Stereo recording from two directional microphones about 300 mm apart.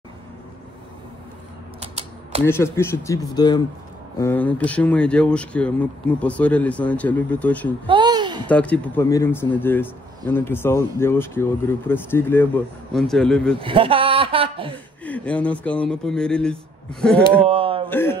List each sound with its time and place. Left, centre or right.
1.8 s typewriter: centre
2.4 s speech: centre
7.8 s babbling: centre
8.5 s speech: centre
13.6 s a man's voice: centre
15.0 s speech: centre
17.5 s a sound: centre
17.8 s speech: centre